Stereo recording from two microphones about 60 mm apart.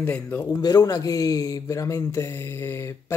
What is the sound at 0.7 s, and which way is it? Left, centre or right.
Speech, left.